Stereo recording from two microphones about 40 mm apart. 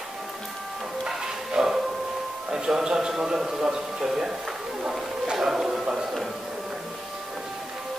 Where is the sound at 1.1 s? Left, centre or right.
Centre.